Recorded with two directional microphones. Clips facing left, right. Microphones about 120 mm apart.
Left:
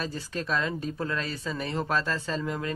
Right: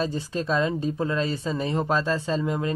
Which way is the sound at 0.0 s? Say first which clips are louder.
Right 6 dB; 20° right (ahead or behind).